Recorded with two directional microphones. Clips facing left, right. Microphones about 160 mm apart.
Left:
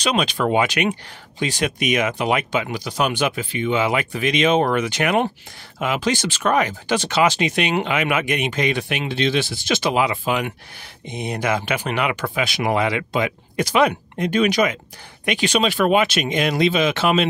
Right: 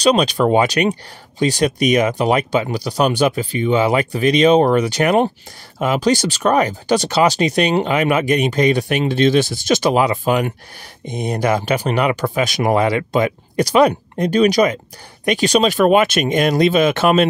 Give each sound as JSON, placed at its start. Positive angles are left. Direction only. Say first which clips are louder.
{"t": 0.0, "sound": "speech", "louder": "right 6 dB", "side_deg": -35}